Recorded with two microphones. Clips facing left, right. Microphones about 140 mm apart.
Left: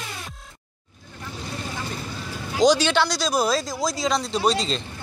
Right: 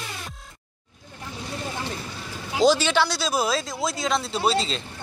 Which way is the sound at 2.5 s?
5° right (ahead or behind).